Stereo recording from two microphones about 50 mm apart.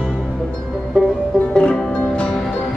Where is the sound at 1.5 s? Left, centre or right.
Centre.